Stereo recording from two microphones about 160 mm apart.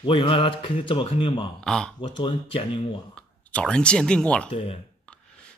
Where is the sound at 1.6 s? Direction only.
5° left (ahead or behind).